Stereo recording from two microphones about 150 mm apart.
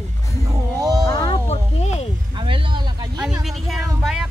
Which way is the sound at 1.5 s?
45° left (ahead or behind).